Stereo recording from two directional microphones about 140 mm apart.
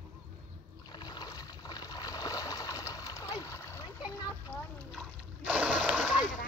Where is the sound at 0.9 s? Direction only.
30° left (ahead or behind).